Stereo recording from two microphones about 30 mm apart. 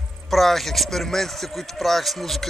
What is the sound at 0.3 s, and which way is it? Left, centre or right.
A man's voice, centre.